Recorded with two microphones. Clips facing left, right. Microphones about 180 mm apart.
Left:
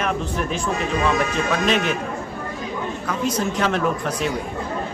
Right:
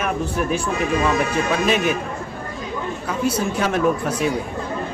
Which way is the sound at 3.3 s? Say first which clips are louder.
Even; 10° right (ahead or behind).